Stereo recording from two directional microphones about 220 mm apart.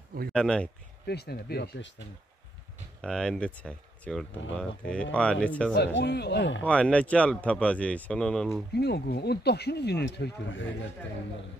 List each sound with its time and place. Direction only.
0.3 s speech: 5° left (ahead or behind)
1.0 s speech: 45° left (ahead or behind)
3.0 s speech: 5° left (ahead or behind)
5.9 s speech: 50° left (ahead or behind)
6.6 s speech: 5° left (ahead or behind)
8.7 s speech: 50° left (ahead or behind)